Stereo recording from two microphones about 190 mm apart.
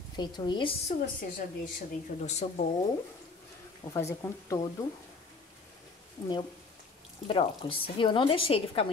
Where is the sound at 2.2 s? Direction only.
35° left (ahead or behind).